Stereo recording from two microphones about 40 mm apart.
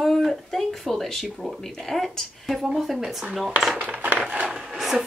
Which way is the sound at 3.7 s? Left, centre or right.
Right.